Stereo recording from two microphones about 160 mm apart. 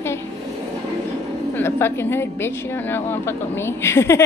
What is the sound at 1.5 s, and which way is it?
A woman's voice, 15° left (ahead or behind).